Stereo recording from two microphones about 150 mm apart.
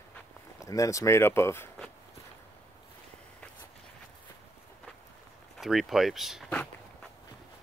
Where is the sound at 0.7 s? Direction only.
20° left (ahead or behind).